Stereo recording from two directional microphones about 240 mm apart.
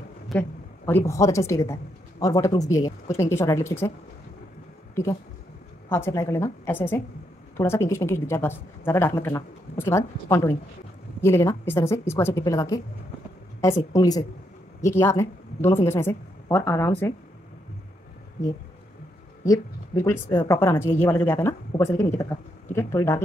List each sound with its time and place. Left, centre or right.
0.3 s a woman's voice: centre
5.9 s a woman's voice: centre
19.4 s a woman's voice: centre